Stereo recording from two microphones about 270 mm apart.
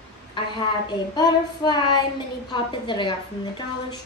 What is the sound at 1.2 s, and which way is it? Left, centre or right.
A woman's voice, centre.